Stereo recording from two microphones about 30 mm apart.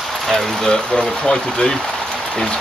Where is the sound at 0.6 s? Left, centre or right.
Left.